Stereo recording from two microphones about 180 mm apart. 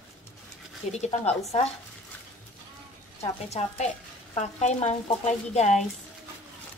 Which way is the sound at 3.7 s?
40° left (ahead or behind).